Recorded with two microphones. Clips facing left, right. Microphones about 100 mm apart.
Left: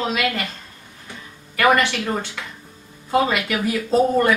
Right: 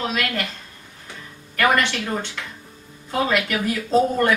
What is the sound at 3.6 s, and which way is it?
Speech, 5° left (ahead or behind).